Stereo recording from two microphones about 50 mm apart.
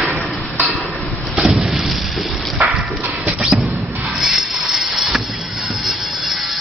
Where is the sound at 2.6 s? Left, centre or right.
Right.